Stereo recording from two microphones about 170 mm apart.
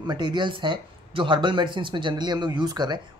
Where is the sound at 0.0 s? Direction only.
25° right (ahead or behind).